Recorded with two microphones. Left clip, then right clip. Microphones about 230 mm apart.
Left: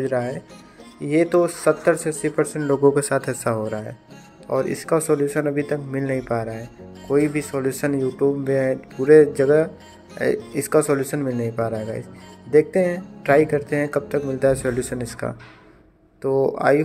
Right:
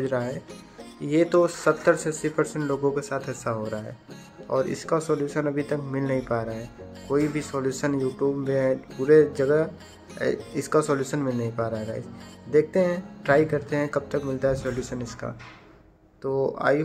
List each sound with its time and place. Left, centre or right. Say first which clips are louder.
0.0 s speech: left 4 dB; centre
2.8 s speech: left 8 dB; left; by 11.5 s centre
11.5 s speech: left 4 dB; centre
14.4 s speech: left 8 dB; centre